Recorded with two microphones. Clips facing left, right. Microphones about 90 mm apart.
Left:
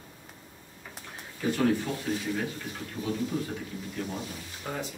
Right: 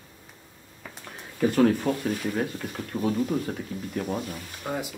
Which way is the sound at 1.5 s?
55° right (ahead or behind).